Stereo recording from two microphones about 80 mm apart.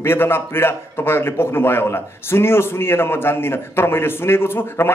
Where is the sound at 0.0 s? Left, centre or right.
Left.